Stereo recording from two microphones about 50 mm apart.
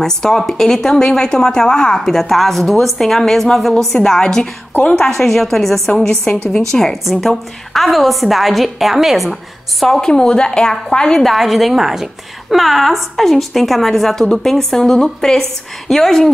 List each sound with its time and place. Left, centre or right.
0.0 s a woman's voice: centre
9.8 s a woman's voice: centre
11.1 s a woman's voice: centre